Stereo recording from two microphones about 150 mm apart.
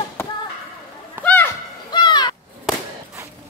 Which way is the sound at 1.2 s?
10° left (ahead or behind).